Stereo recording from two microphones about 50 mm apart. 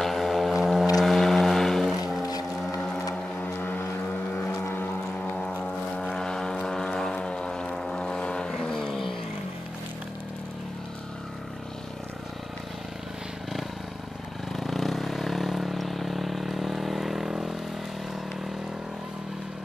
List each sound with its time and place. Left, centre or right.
0.0 s vehicle: centre
2.8 s vehicle: centre
3.4 s vehicle: left; by 9.1 s centre
14.5 s vehicle: centre